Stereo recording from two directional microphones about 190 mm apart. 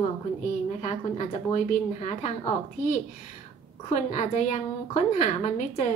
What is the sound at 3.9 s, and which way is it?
A woman's voice, 40° left (ahead or behind).